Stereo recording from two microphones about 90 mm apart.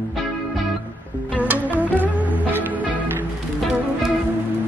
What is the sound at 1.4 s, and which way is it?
Music, 20° right (ahead or behind).